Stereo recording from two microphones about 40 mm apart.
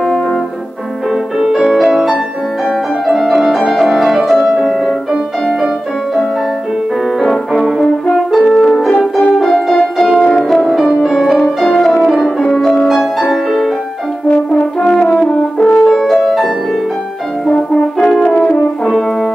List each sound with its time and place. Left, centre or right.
1.4 s music: centre
3.1 s music: centre
7.2 s music: centre
8.3 s french horn: centre
9.4 s music: centre
10.9 s music: centre
14.2 s french horn: left
15.2 s french horn: left
15.9 s music: centre
17.9 s french horn: centre